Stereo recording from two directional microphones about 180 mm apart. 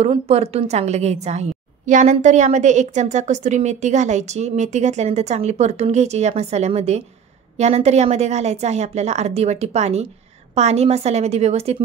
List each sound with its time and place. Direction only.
0.0 s a woman's voice: 35° right (ahead or behind)